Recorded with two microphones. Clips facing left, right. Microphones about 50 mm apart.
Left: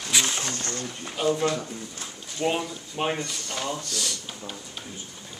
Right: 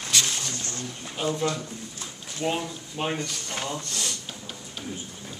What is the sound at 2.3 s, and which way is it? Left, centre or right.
Speech, centre.